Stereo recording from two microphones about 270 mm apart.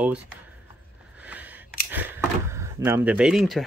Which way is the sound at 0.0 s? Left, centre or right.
Centre.